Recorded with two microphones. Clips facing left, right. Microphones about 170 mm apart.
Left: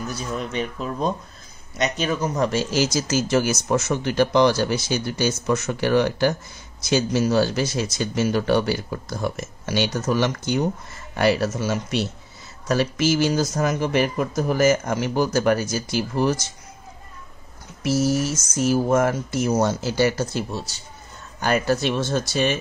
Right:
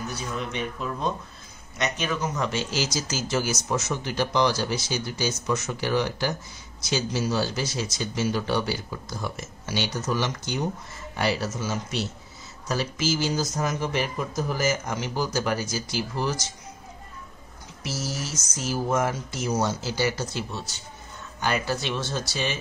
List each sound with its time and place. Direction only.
1.8 s speech: 30° left (ahead or behind); by 16.3 s 55° left (ahead or behind)
17.8 s speech: 55° left (ahead or behind)